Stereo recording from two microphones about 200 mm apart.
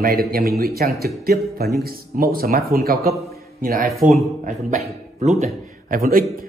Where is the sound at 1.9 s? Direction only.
45° right (ahead or behind).